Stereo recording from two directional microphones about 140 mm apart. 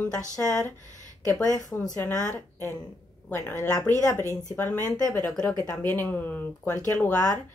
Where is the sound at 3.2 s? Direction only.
10° left (ahead or behind).